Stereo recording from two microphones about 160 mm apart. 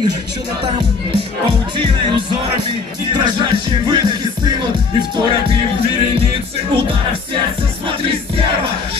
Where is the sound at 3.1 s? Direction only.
30° right (ahead or behind).